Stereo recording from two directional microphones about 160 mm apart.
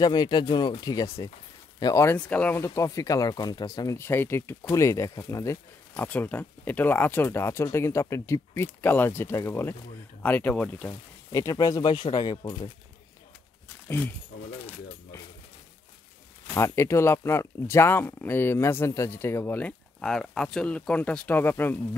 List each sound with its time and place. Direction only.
0.0 s speech: 25° left (ahead or behind)
2.0 s speech: 10° left (ahead or behind)
10.9 s speech: 20° left (ahead or behind)
13.8 s speech: 15° left (ahead or behind)
16.5 s speech: 15° left (ahead or behind)